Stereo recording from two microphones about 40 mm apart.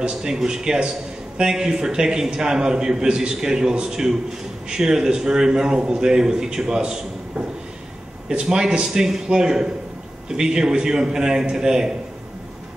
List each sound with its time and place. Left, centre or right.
0.1 s a man's voice: centre